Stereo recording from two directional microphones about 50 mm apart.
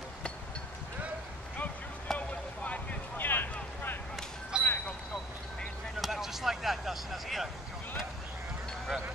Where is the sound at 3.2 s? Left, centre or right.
Left.